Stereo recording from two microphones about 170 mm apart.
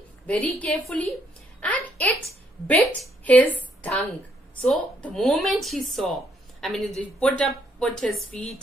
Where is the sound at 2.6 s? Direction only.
10° left (ahead or behind).